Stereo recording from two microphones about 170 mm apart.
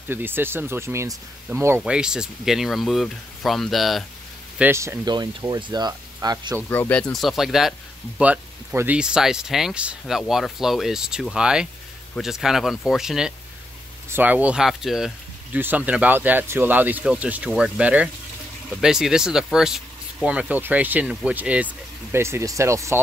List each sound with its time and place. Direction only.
0.1 s speech: 15° right (ahead or behind)
1.8 s speech: 5° right (ahead or behind)
4.6 s speech: 15° right (ahead or behind)
6.7 s speech: 10° left (ahead or behind); by 22.9 s 15° right (ahead or behind)